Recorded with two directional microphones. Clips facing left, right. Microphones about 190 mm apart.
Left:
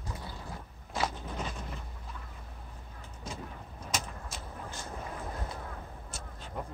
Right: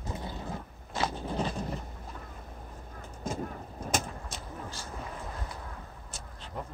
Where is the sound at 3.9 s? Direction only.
50° right (ahead or behind).